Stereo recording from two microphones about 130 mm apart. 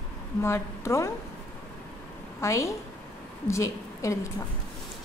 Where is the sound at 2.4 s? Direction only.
25° left (ahead or behind).